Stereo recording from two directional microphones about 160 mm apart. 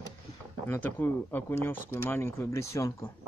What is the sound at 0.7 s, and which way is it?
Speech, 15° left (ahead or behind).